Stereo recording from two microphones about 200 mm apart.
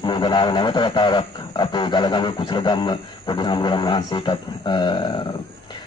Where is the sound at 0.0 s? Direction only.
25° left (ahead or behind).